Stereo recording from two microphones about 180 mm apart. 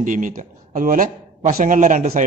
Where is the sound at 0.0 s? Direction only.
45° right (ahead or behind).